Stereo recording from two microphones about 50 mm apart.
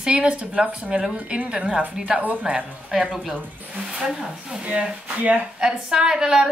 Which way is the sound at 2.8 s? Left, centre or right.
Centre.